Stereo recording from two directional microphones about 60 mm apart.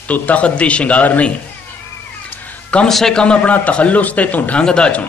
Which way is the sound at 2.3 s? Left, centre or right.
Left.